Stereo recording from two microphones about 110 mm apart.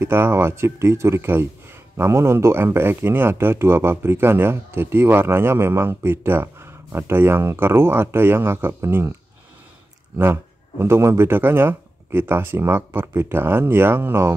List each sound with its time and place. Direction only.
0.0 s speech: 20° right (ahead or behind)
10.1 s speech: 20° right (ahead or behind)